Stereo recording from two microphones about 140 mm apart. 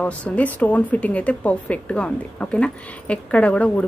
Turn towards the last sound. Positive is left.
turn(degrees=10)  # may be behind; listen again after turning